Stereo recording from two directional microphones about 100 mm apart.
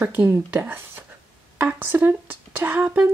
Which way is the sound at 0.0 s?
20° right (ahead or behind).